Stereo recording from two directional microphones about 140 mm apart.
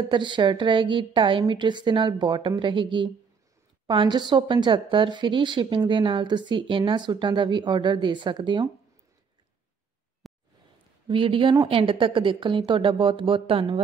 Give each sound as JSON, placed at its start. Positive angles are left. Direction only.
{"t": 0.1, "sound": "a woman's voice", "side_deg": -35}
{"t": 10.2, "sound": "a sound", "side_deg": 0}
{"t": 11.1, "sound": "a woman's voice", "side_deg": -40}